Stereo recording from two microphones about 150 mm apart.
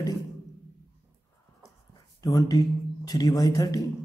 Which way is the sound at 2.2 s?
25° left (ahead or behind).